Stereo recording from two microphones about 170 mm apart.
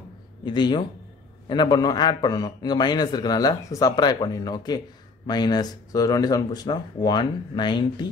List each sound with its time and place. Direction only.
0.5 s a man's voice: 25° left (ahead or behind)